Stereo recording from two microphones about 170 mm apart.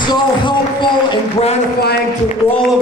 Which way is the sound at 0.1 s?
25° left (ahead or behind).